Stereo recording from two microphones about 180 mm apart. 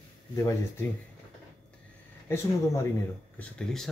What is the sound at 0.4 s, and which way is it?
Speech, 15° left (ahead or behind).